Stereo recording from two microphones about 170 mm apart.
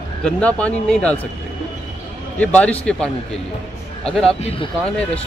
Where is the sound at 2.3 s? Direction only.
10° left (ahead or behind).